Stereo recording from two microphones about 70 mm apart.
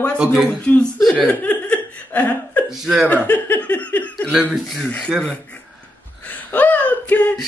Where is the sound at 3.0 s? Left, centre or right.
Left.